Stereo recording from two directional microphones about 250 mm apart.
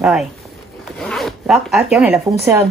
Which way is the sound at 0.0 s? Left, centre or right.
Centre.